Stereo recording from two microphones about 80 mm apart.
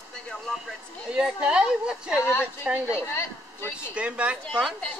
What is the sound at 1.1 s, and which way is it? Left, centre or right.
Speech, centre.